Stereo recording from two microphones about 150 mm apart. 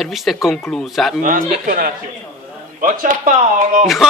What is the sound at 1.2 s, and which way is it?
Speech, 70° right (ahead or behind).